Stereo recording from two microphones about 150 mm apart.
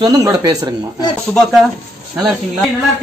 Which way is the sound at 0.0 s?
25° right (ahead or behind).